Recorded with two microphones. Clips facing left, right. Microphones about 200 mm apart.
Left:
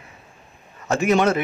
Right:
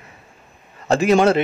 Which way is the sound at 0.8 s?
30° right (ahead or behind).